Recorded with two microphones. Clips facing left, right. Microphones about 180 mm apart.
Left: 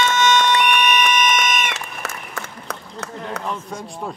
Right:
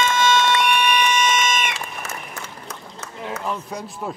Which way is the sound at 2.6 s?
65° left (ahead or behind).